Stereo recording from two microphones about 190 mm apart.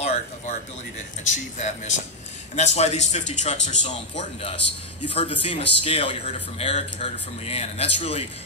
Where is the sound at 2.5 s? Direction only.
35° left (ahead or behind).